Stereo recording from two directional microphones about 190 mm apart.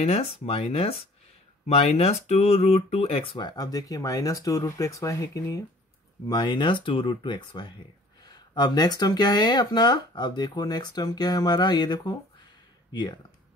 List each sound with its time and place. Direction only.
0.0 s speech: 30° left (ahead or behind)